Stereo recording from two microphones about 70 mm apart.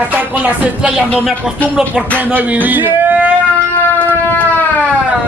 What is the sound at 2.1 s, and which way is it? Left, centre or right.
Speech, right.